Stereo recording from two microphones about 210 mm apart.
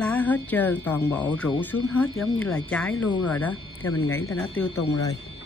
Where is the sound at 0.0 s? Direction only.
5° left (ahead or behind).